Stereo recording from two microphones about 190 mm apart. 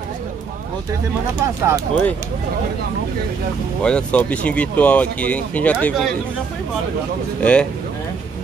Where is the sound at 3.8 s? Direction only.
5° left (ahead or behind).